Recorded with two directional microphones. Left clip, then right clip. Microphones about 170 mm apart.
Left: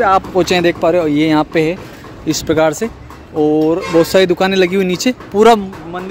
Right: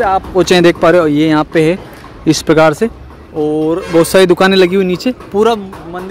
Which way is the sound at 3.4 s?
5° left (ahead or behind).